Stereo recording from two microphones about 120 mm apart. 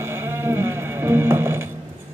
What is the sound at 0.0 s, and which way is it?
Sheep, 20° right (ahead or behind).